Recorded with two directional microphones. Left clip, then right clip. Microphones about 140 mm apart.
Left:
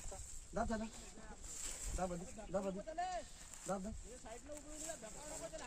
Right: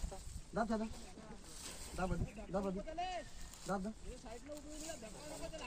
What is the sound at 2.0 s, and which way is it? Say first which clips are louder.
Speech: right 1 dB; 40° left (ahead or behind).